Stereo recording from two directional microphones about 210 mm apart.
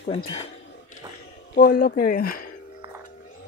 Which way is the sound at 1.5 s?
45° left (ahead or behind).